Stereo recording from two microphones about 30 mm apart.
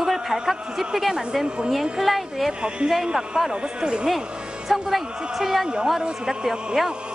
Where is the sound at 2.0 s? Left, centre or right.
Centre.